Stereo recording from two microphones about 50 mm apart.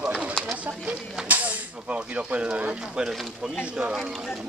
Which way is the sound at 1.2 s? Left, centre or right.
Right.